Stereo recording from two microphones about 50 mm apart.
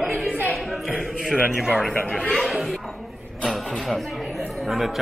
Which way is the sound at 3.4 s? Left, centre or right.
Centre.